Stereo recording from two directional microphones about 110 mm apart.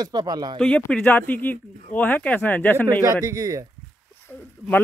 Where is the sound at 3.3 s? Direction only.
30° right (ahead or behind).